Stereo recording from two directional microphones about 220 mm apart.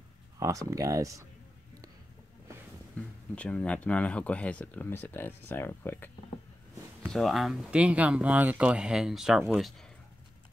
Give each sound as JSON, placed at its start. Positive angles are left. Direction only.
{"t": 0.4, "sound": "speech", "side_deg": -15}
{"t": 3.0, "sound": "speech", "side_deg": 5}